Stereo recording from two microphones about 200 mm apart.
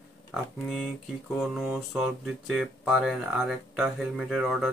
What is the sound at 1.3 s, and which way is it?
Speech, centre (ahead or behind).